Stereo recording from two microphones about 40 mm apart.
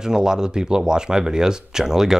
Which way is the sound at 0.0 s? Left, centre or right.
Centre.